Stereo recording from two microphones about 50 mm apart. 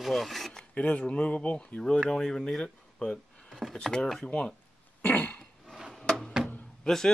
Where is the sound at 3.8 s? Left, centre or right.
Centre.